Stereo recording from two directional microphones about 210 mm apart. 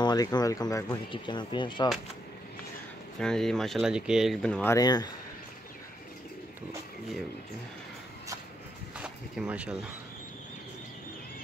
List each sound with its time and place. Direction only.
0.0 s speech: 20° left (ahead or behind)
3.2 s speech: 5° left (ahead or behind)
4.7 s speech: 20° left (ahead or behind)
8.9 s a sound: 5° right (ahead or behind)